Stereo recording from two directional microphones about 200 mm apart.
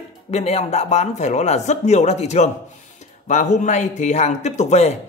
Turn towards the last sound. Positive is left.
turn(degrees=35)  # may be behind; listen again after turning